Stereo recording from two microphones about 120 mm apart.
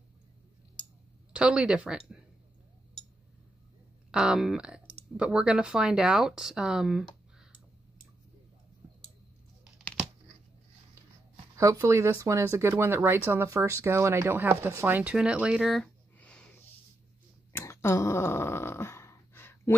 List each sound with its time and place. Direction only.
1.3 s speech: 10° right (ahead or behind)
4.1 s speech: 5° right (ahead or behind)
11.5 s speech: 25° right (ahead or behind); by 15.9 s centre (ahead or behind)
16.2 s sniff: 10° left (ahead or behind)
17.5 s dog: 20° left (ahead or behind)